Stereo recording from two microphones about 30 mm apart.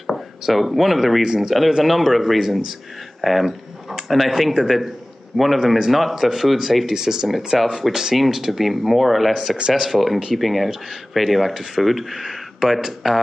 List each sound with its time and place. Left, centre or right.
0.0 s speech: centre
1.2 s speech: centre
1.9 s speech: centre
6.9 s speech: centre
7.5 s speech: centre
7.9 s speech: right
8.2 s speech: centre